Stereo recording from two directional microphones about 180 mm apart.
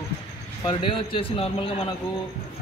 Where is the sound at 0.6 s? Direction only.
30° left (ahead or behind).